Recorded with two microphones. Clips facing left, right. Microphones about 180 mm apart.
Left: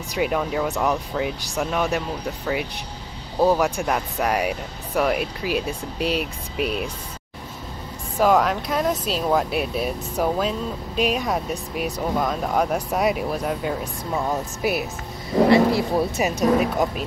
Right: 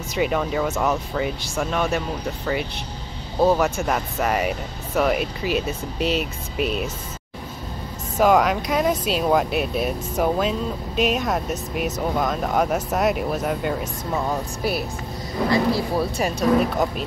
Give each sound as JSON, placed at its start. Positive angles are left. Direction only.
{"t": 0.1, "sound": "speech", "side_deg": 0}
{"t": 8.2, "sound": "speech", "side_deg": -5}
{"t": 14.6, "sound": "speech", "side_deg": 15}
{"t": 16.5, "sound": "speech", "side_deg": 5}